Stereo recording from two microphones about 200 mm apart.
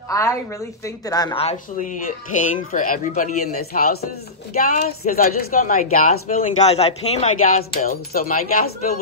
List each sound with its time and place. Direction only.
0.1 s a woman's voice: 15° left (ahead or behind)
1.4 s a woman's voice: 35° left (ahead or behind)
7.7 s a man's voice: 45° left (ahead or behind)